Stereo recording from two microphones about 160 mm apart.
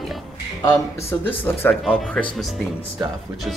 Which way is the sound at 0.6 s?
20° left (ahead or behind).